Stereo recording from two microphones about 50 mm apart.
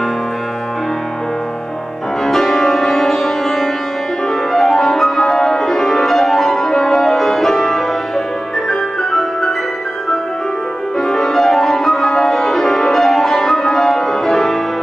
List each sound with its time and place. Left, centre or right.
2.2 s music: centre
11.0 s music: centre